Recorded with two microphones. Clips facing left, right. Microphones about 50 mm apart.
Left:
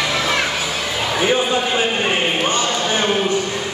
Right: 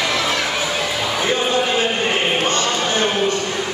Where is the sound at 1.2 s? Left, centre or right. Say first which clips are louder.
Left 2 dB; centre.